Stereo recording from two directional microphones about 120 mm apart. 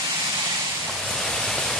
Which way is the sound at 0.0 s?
25° right (ahead or behind).